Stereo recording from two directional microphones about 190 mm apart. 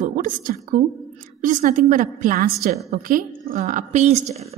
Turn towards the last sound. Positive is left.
turn(degrees=-35)  # may be behind; listen again after turning